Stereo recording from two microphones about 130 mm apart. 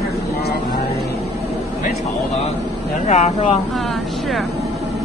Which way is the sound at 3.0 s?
60° left (ahead or behind).